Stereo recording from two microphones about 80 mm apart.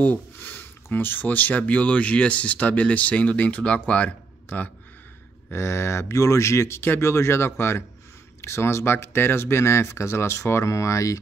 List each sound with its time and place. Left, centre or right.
0.0 s a sound: left
1.6 s speech: centre
5.5 s speech: left